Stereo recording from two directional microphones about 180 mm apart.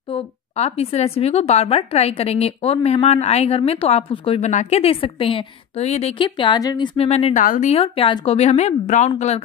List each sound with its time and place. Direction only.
0.1 s speech: 35° left (ahead or behind)
7.0 s speech: 35° left (ahead or behind)
7.4 s speech: 45° left (ahead or behind)
7.7 s speech: 30° left (ahead or behind)